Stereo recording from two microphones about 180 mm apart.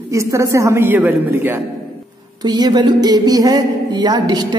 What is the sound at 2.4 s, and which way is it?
A woman's voice, 20° right (ahead or behind).